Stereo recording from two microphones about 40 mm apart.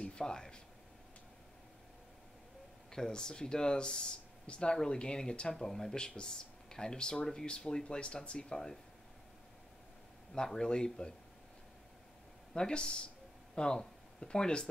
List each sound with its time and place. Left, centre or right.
0.0 s speech: left
2.9 s speech: centre
5.6 s speech: centre
5.9 s speech: left
10.3 s speech: centre
12.5 s speech: left